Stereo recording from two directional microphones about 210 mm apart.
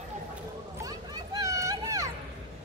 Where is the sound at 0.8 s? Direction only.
15° right (ahead or behind).